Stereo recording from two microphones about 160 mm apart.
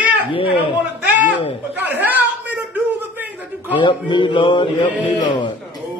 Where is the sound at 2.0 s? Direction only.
10° right (ahead or behind).